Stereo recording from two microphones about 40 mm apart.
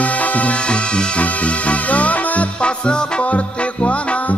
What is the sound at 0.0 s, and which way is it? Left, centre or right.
Music, left.